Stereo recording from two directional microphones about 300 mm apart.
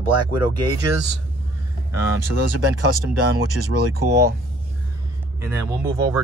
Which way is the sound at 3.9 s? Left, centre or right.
Right.